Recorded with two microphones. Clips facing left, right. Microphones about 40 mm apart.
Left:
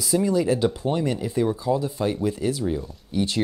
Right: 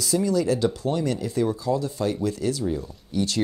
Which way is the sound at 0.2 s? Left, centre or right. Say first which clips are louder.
Left 1 dB; left.